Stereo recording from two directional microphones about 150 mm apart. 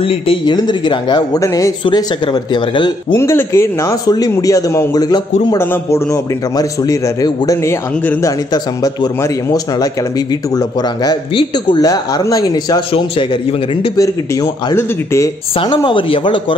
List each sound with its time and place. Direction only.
0.0 s speech: 35° left (ahead or behind)
3.2 s a man's voice: 20° left (ahead or behind)
8.0 s a man's voice: 10° left (ahead or behind)
8.8 s speech: 25° left (ahead or behind)
13.9 s speech: 20° left (ahead or behind)
15.6 s speech: 35° left (ahead or behind)